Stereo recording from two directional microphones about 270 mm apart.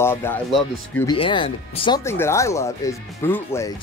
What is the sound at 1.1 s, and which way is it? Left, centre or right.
Speech, centre.